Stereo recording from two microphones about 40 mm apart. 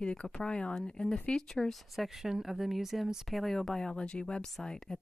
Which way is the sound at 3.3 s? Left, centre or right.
Centre.